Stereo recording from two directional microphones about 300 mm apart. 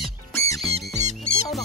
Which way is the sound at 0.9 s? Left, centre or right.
Right.